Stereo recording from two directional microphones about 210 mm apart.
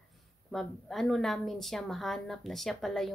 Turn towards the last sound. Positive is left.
turn(degrees=0)  # may be behind; listen again after turning